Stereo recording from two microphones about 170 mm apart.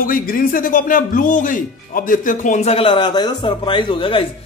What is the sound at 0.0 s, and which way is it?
Speech, 55° left (ahead or behind).